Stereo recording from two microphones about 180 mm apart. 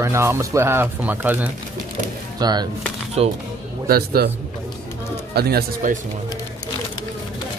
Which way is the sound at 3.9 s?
60° right (ahead or behind).